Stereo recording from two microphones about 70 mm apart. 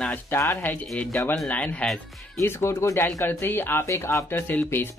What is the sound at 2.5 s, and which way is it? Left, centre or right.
Speech, left.